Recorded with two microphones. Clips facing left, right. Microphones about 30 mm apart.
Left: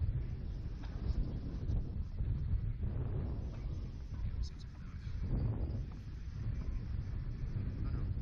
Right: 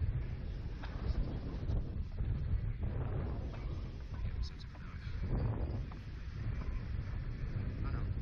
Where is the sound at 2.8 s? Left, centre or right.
Right.